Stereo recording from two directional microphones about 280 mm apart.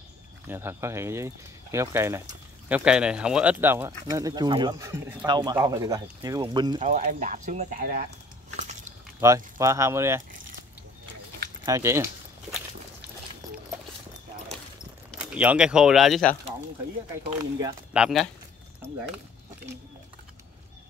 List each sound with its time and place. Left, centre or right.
0.5 s speech: centre
6.8 s speech: right
8.5 s pig: right
9.2 s speech: centre
11.6 s a sound: centre
15.2 s speech: centre
17.6 s speech: centre